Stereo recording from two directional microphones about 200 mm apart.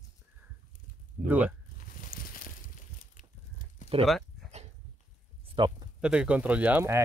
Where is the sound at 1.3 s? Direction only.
10° right (ahead or behind).